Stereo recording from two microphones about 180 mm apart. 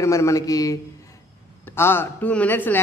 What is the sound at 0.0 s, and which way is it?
Speech, 15° left (ahead or behind).